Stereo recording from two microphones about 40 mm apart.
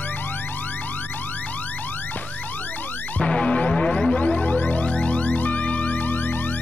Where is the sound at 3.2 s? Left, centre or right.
Left.